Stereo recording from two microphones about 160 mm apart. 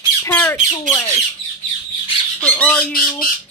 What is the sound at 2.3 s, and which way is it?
Squawk, 10° left (ahead or behind).